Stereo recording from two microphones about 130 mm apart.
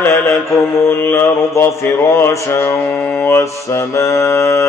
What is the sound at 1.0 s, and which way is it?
Mantra, 20° left (ahead or behind).